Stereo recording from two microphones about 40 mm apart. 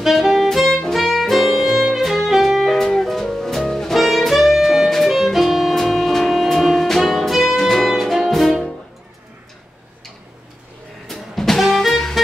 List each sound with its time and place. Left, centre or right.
0.0 s music: centre
3.9 s saxophone: centre
4.8 s music: centre
11.1 s music: centre